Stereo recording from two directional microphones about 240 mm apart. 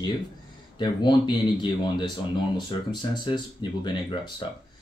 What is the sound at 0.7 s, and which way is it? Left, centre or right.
Speech, centre.